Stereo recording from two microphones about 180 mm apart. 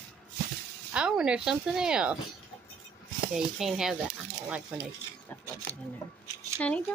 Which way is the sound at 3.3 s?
5° right (ahead or behind).